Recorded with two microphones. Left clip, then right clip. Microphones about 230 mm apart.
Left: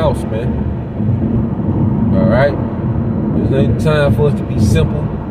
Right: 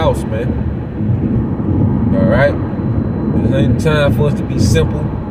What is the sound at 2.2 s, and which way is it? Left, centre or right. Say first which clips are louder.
Speech: even; centre.